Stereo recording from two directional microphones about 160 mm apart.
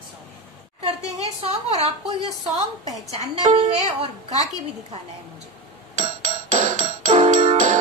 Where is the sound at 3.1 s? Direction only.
45° right (ahead or behind).